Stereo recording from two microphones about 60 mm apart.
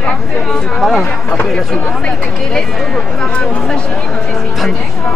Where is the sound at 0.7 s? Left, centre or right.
Centre.